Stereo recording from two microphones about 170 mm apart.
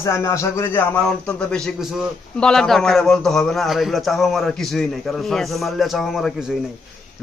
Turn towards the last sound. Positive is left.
turn(degrees=0)  # may be behind; listen again after turning